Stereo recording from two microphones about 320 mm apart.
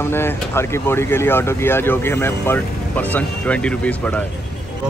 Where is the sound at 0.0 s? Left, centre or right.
Centre.